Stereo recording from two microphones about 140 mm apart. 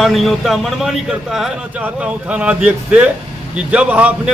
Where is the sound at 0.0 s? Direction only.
Centre (ahead or behind).